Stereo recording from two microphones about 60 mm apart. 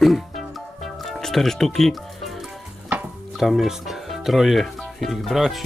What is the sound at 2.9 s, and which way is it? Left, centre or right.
Music, right.